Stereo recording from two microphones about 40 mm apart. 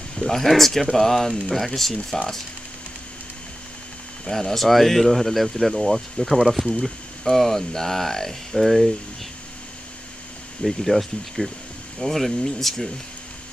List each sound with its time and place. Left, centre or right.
0.1 s speech: centre
4.3 s speech: centre
10.6 s speech: centre